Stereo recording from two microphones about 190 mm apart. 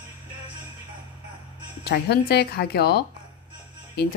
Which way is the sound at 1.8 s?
60° left (ahead or behind).